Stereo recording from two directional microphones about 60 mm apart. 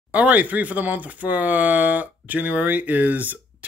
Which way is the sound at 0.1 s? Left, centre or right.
Right.